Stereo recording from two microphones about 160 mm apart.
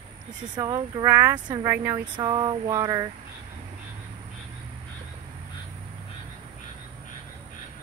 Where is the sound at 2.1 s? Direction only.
25° right (ahead or behind).